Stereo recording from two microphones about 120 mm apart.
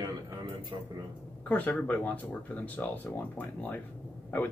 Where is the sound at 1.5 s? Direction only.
15° left (ahead or behind).